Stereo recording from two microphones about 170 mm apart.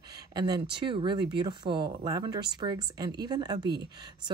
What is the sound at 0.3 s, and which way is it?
Speech, 25° right (ahead or behind).